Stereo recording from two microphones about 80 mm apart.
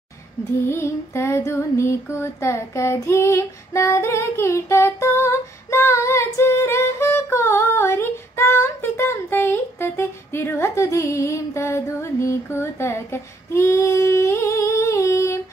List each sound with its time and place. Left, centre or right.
0.7 s female singing: left